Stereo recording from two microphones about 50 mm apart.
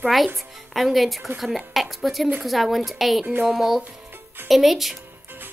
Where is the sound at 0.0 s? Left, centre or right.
Centre.